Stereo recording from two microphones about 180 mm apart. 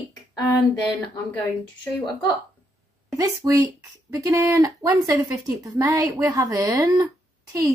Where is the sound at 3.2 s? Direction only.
20° right (ahead or behind).